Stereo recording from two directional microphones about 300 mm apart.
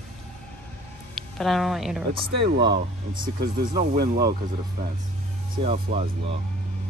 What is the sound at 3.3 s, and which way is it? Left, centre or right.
Speech, right.